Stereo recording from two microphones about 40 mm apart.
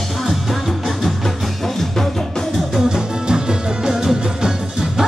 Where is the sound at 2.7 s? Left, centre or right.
Centre.